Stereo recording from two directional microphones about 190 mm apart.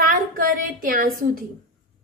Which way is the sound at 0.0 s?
50° right (ahead or behind).